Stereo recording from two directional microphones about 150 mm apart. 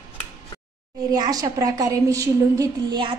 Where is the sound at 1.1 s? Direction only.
25° right (ahead or behind).